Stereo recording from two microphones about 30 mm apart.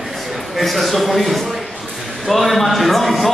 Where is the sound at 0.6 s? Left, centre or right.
Centre.